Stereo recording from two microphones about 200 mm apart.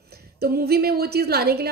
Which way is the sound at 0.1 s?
50° right (ahead or behind).